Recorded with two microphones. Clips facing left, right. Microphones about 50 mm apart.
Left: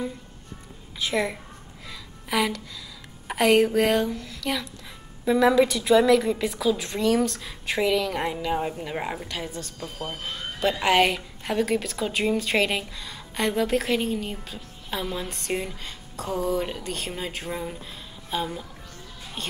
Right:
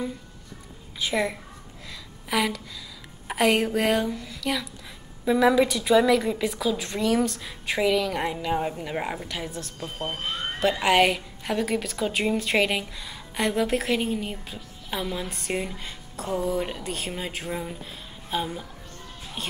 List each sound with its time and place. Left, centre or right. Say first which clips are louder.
0.9 s a woman's voice: even; centre
1.9 s a sound: even; centre
3.3 s a woman's voice: left 3 dB; centre
9.8 s speech: right 4 dB; right
10.6 s a woman's voice: even; centre